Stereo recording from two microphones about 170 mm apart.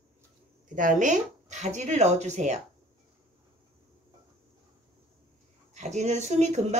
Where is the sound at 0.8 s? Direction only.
50° right (ahead or behind).